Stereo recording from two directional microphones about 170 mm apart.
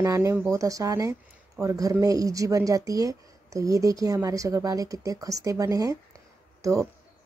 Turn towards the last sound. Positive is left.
turn(degrees=-20)  # may be behind; listen again after turning